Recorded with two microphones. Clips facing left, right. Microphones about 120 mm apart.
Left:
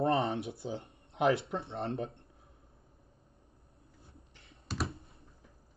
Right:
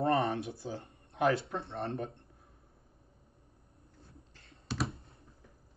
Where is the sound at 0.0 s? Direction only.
25° left (ahead or behind).